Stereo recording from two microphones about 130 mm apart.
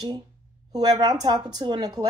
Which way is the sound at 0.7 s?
30° right (ahead or behind).